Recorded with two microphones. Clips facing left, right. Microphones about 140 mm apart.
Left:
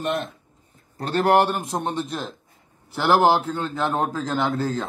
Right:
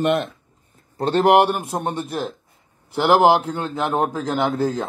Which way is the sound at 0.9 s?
25° right (ahead or behind).